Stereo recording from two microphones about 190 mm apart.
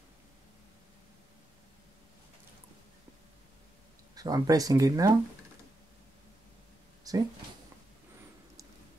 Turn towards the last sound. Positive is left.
turn(degrees=-20)  # may be behind; listen again after turning